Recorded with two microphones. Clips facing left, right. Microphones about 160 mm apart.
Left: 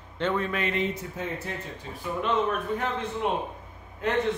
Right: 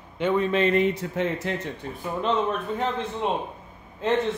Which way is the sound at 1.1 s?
85° right.